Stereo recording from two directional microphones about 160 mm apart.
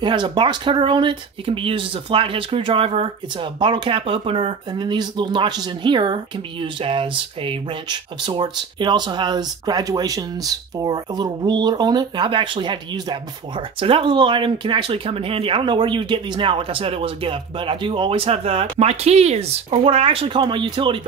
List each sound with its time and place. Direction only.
0.0 s speech: 30° right (ahead or behind)